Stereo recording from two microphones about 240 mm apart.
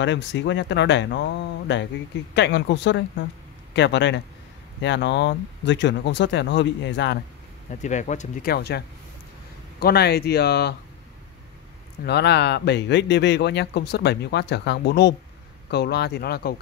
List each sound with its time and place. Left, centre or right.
0.0 s speech: left
7.8 s speech: left
12.0 s speech: left